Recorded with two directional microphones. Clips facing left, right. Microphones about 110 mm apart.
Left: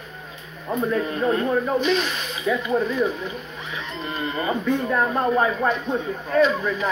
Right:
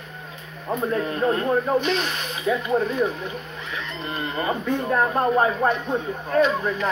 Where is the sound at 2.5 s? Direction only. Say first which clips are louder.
Even; 25° right (ahead or behind).